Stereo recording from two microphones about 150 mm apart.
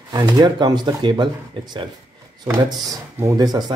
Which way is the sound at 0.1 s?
25° right (ahead or behind).